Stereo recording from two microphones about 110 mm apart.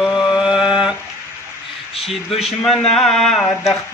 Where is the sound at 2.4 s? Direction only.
5° left (ahead or behind).